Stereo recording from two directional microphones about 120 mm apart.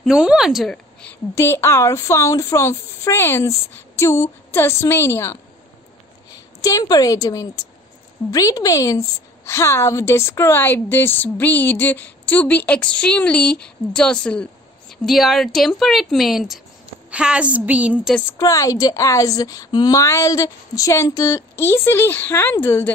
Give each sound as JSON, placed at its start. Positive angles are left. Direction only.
{"t": 0.0, "sound": "speech", "side_deg": -5}
{"t": 1.3, "sound": "a woman's voice", "side_deg": 20}
{"t": 6.6, "sound": "a woman's voice", "side_deg": 30}
{"t": 18.4, "sound": "a woman's voice", "side_deg": 30}